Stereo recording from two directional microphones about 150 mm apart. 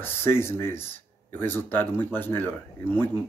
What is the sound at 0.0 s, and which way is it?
Speech, 15° left (ahead or behind).